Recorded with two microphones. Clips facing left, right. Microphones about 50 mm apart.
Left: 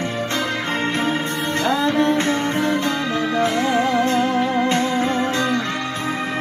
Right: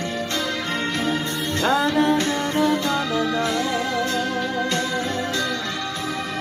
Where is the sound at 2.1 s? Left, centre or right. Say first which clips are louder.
Left 2 dB; left.